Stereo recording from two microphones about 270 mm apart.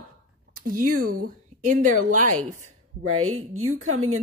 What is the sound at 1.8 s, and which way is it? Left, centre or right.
Speech, right.